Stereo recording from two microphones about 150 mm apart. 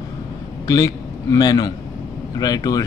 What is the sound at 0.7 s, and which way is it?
A man's voice, 25° left (ahead or behind).